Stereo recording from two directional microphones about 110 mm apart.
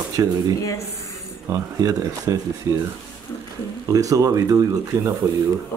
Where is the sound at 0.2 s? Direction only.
30° right (ahead or behind).